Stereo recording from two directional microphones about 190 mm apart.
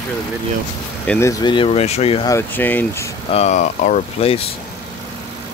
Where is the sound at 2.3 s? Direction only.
10° left (ahead or behind).